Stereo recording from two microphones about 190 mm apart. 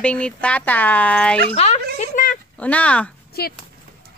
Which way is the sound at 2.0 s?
40° left (ahead or behind).